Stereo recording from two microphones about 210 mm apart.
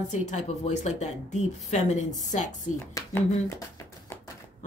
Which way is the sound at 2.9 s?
15° left (ahead or behind).